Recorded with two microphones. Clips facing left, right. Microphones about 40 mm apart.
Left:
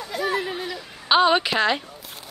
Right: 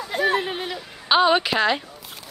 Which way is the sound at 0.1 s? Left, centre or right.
Right.